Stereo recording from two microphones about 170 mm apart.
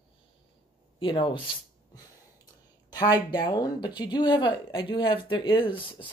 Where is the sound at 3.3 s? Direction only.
25° left (ahead or behind).